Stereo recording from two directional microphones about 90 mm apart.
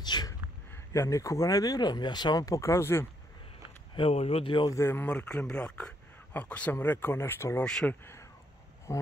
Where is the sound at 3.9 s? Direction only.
85° left.